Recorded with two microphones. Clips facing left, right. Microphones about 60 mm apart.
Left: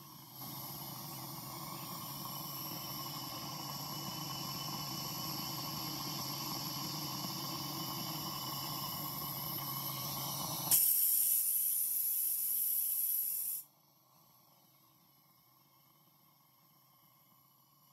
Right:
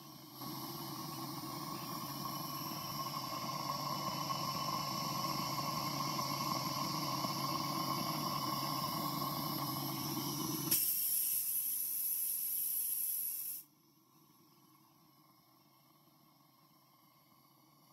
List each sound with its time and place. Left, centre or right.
0.1 s vehicle: right
9.9 s vehicle: right
10.5 s a sound: right